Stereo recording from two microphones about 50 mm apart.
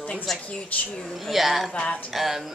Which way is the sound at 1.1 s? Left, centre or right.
Centre.